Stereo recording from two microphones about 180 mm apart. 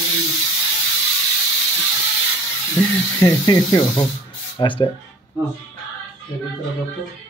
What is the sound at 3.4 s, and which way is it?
Mantra, 20° left (ahead or behind).